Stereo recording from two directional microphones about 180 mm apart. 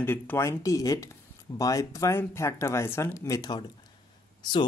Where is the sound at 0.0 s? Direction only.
10° left (ahead or behind).